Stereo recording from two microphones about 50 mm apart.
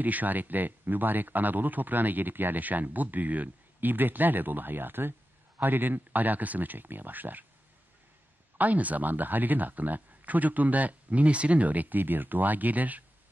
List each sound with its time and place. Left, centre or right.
0.0 s speech: right
8.5 s speech: right